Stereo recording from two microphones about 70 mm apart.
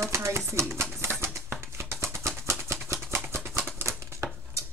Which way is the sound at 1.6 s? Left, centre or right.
Right.